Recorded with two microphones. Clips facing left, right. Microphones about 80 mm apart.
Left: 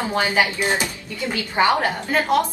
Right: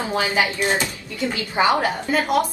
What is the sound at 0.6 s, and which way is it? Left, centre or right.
Speech, centre.